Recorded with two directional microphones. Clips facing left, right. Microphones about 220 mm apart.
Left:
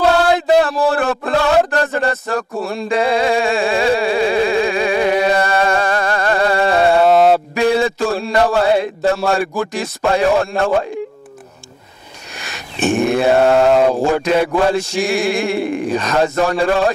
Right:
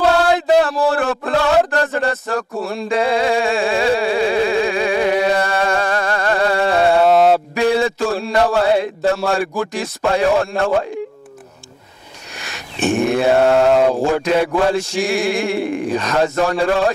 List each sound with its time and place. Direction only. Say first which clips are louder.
0.0 s a sound: left 1 dB; 20° left (ahead or behind)
12.4 s mantra: left 1 dB; 15° left (ahead or behind)
13.9 s speech: left 1 dB; 25° left (ahead or behind)
14.9 s chant: left 1 dB; 15° left (ahead or behind)
16.0 s speech: left 1 dB; 20° left (ahead or behind)